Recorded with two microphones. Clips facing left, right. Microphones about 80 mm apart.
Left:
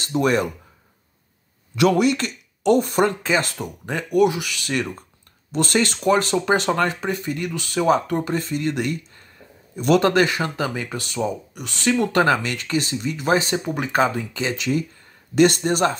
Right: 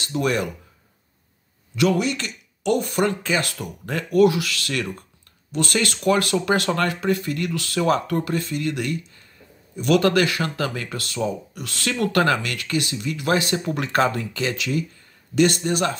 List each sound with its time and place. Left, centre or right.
0.1 s speech: left
1.8 s speech: left
3.5 s speech: centre
5.5 s speech: left
8.4 s speech: left
15.3 s speech: left